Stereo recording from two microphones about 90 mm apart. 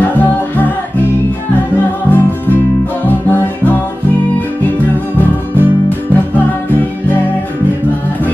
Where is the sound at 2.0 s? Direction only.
20° left (ahead or behind).